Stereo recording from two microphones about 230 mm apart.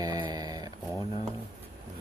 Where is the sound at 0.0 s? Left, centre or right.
Centre.